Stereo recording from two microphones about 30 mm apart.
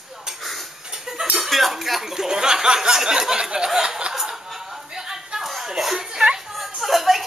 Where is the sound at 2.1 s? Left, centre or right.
Right.